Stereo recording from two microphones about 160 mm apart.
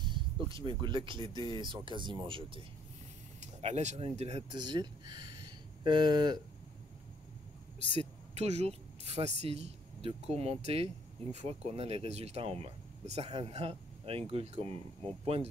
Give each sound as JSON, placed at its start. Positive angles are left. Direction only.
{"t": 0.0, "sound": "a sound", "side_deg": -30}
{"t": 0.7, "sound": "speech", "side_deg": -30}
{"t": 3.3, "sound": "speech", "side_deg": -45}
{"t": 4.5, "sound": "speech", "side_deg": -25}
{"t": 8.0, "sound": "speech", "side_deg": -40}